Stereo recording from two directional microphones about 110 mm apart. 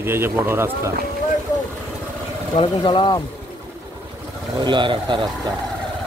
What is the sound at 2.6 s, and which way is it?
Speech, 50° left (ahead or behind).